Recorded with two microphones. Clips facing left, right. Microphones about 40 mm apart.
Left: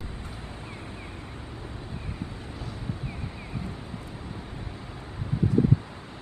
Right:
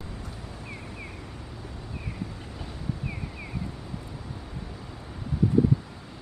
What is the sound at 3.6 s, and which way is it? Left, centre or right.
Vehicle, left.